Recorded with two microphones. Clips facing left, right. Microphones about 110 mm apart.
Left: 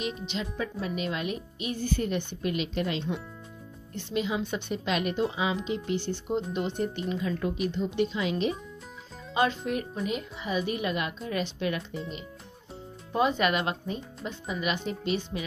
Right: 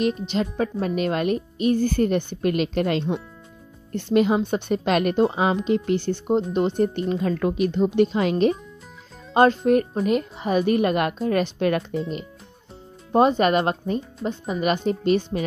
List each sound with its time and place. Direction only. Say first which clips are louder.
0.3 s a woman's voice: right 9 dB; 50° right (ahead or behind)
4.4 s a woman's voice: right 8 dB; 40° right (ahead or behind)
4.7 s a woman's voice: right 8 dB; 55° right (ahead or behind)
7.3 s a woman's voice: right 8 dB; 75° right (ahead or behind); by 11.8 s 55° right (ahead or behind)
13.1 s a woman's voice: right 8 dB; 40° right (ahead or behind)